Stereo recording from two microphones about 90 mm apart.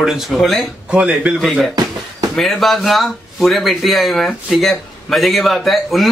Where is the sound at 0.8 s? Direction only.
10° right (ahead or behind).